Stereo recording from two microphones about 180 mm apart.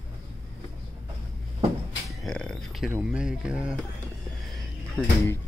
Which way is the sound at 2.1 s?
5° left (ahead or behind).